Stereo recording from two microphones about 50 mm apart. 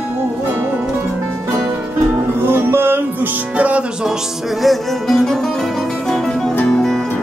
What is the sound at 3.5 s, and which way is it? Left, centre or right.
Music, right.